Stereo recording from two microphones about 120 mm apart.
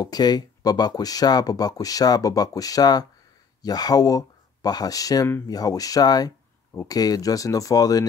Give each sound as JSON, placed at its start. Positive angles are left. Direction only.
{"t": 0.0, "sound": "speech", "side_deg": 35}